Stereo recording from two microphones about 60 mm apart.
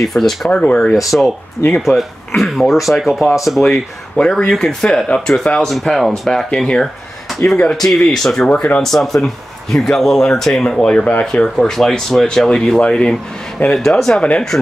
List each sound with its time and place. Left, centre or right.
0.1 s speech: centre
0.5 s speech: left
1.7 s speech: centre
4.2 s speech: left
4.5 s speech: centre
5.8 s speech: centre
8.5 s speech: left
8.8 s speech: centre
11.1 s speech: left
11.4 s speech: centre
13.7 s speech: centre